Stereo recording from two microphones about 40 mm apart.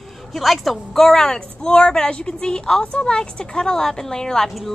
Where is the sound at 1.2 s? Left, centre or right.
Left.